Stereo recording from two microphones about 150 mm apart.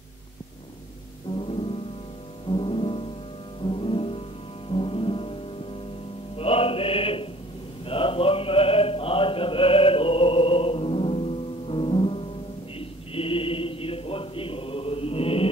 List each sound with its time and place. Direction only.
1.3 s music: 35° left (ahead or behind)
7.8 s chant: 35° left (ahead or behind)
12.7 s a sound: 40° left (ahead or behind)